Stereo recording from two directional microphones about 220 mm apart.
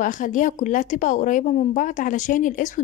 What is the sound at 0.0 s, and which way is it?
A woman's voice, 35° left (ahead or behind).